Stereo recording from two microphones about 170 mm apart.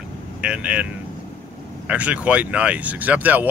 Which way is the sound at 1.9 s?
10° right (ahead or behind).